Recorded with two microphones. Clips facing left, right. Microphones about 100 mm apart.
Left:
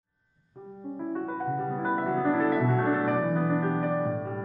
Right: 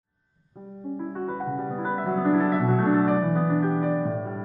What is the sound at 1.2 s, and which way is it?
Music, 25° right (ahead or behind).